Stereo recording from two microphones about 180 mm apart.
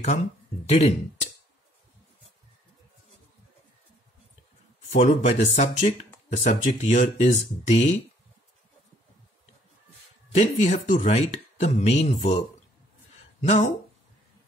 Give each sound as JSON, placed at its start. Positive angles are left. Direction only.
{"t": 0.7, "sound": "speech", "side_deg": 40}
{"t": 4.9, "sound": "speech", "side_deg": 40}
{"t": 10.3, "sound": "speech", "side_deg": 40}